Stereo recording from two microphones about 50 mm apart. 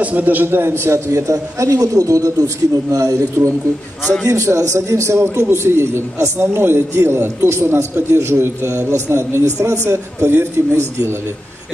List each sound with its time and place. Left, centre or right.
0.0 s a man's voice: right
3.4 s a man's voice: right
4.3 s a man's voice: right
10.3 s a man's voice: right